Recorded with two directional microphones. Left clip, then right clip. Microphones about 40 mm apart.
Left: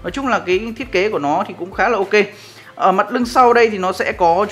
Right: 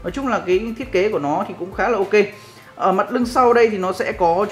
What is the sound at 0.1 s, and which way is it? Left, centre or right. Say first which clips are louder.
Speech: left 2 dB; left.